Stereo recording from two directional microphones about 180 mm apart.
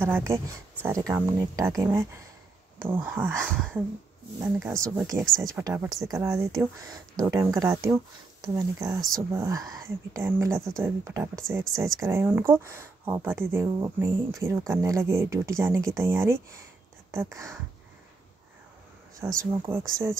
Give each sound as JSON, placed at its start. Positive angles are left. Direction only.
{"t": 0.0, "sound": "speech", "side_deg": -10}
{"t": 4.6, "sound": "speech", "side_deg": -15}
{"t": 5.2, "sound": "speech", "side_deg": 0}
{"t": 5.5, "sound": "speech", "side_deg": -20}
{"t": 19.3, "sound": "speech", "side_deg": -15}